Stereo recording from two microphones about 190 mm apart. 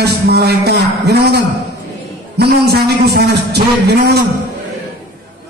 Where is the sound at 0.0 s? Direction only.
60° right (ahead or behind).